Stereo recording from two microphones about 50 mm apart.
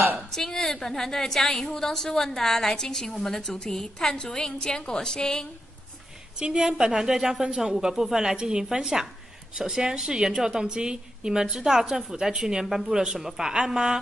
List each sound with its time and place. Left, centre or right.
0.3 s a woman's voice: centre
6.3 s a woman's voice: centre